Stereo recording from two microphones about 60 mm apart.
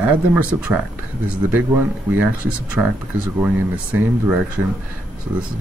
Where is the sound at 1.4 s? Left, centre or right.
Right.